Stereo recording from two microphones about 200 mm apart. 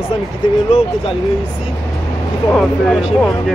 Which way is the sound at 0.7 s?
30° left (ahead or behind).